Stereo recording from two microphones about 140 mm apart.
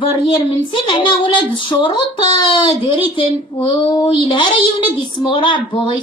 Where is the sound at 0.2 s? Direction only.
35° left (ahead or behind).